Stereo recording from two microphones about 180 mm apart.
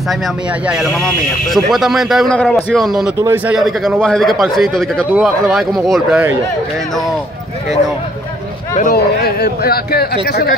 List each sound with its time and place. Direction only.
0.7 s a man's voice: centre (ahead or behind)
3.2 s a man's voice: 15° right (ahead or behind)
3.5 s a man's voice: centre (ahead or behind)
8.7 s speech: 55° left (ahead or behind)